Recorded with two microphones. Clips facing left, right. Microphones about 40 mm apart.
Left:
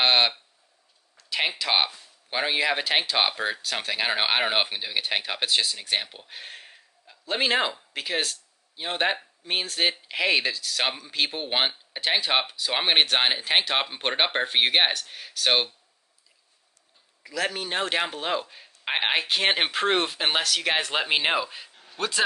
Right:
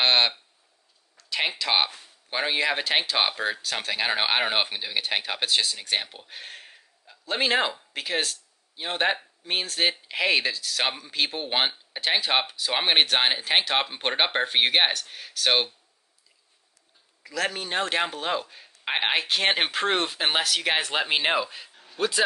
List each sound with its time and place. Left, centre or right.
0.0 s a sound: centre
2.2 s speech: centre
17.2 s speech: centre